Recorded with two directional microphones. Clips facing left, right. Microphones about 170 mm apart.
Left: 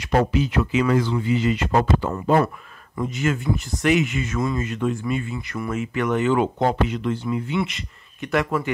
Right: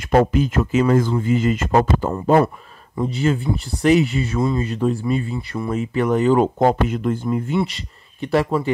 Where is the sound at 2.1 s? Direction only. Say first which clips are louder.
Right 5 dB; 35° right (ahead or behind).